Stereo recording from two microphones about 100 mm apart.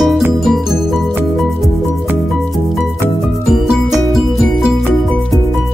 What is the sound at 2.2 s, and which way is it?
Music, centre (ahead or behind).